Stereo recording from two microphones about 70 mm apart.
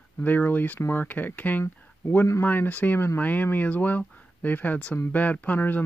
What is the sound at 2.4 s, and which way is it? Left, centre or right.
Speech, left.